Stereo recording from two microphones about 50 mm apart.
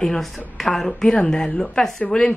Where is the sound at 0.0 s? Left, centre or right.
Centre.